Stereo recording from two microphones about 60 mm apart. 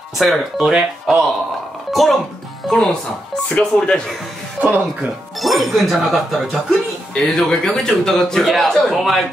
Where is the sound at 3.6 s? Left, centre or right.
Left.